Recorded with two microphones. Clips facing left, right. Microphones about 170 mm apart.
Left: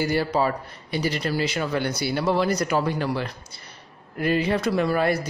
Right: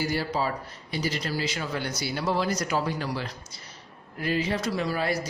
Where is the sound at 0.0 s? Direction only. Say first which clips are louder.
Left 5 dB; 60° left (ahead or behind).